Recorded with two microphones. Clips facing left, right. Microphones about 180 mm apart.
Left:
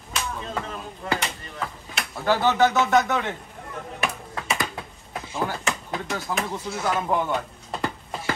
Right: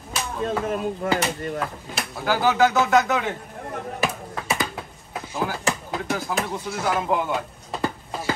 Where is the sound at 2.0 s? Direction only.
5° right (ahead or behind).